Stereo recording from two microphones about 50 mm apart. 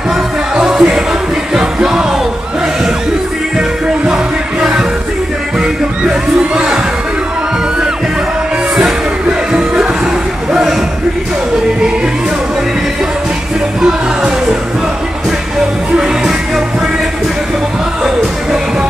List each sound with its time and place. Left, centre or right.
0.7 s music: centre
3.5 s music: centre
5.6 s crowd: centre
9.5 s music: centre
10.5 s a sound: centre
13.7 s music: centre
15.9 s music: centre